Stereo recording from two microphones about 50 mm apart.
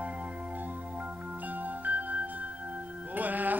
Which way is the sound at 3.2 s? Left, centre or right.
Right.